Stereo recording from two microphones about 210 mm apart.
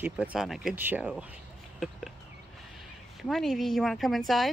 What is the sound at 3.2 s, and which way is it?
Speech, centre (ahead or behind).